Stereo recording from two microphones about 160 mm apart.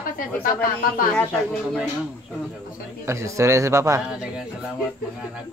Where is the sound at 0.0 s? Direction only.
60° left (ahead or behind).